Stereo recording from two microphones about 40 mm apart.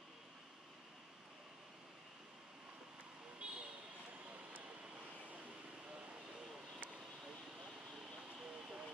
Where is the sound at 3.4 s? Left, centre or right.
Right.